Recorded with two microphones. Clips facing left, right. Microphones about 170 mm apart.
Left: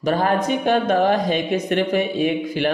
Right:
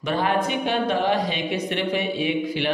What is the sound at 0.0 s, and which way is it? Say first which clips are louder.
A man's voice: left 3 dB; 40° left (ahead or behind).